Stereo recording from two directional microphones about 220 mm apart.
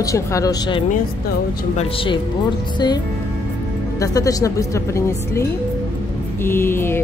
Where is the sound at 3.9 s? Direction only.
15° left (ahead or behind).